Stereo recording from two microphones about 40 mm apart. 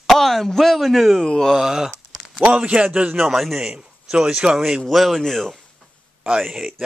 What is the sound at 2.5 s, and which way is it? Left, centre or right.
Speech, right.